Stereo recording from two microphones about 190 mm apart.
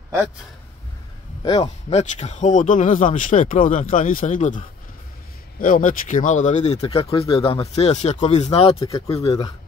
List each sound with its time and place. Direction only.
1.4 s speech: 25° left (ahead or behind)
8.8 s speech: 15° left (ahead or behind)